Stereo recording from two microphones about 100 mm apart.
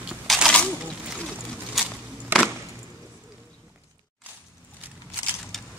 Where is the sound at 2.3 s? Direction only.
20° right (ahead or behind).